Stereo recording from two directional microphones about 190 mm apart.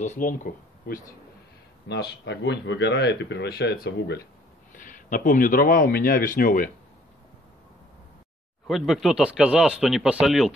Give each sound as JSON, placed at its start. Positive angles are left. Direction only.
{"t": 0.0, "sound": "speech", "side_deg": 35}
{"t": 0.3, "sound": "speech", "side_deg": 50}
{"t": 1.9, "sound": "speech", "side_deg": 65}
{"t": 4.7, "sound": "speech", "side_deg": 45}
{"t": 8.6, "sound": "speech", "side_deg": 0}